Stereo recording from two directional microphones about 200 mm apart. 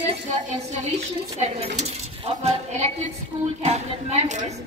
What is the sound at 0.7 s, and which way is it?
Speech, 35° right (ahead or behind).